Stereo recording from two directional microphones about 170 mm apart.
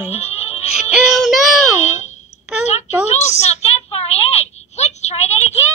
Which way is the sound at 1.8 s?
45° left (ahead or behind).